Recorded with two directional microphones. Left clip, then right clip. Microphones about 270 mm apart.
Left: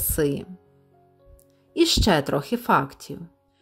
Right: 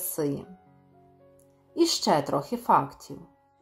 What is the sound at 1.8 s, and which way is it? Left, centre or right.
Female singing, left.